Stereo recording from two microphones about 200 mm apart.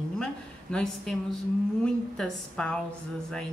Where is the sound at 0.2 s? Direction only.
5° left (ahead or behind).